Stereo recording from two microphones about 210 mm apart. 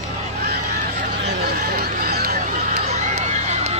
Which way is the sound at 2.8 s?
30° right (ahead or behind).